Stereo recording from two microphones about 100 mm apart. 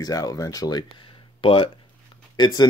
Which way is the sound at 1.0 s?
60° left (ahead or behind).